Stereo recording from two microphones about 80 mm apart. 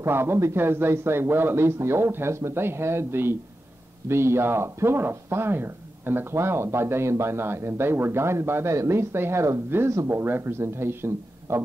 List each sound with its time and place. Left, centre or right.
0.0 s speech: right